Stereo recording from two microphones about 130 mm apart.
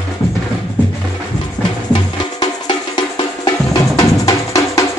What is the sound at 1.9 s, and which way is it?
Music, 35° left (ahead or behind).